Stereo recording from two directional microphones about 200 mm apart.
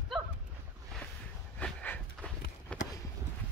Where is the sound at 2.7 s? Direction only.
5° left (ahead or behind).